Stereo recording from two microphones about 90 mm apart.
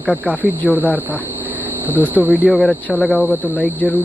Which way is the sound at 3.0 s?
15° right (ahead or behind).